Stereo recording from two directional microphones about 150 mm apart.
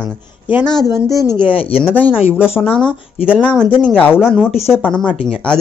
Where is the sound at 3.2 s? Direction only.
10° right (ahead or behind).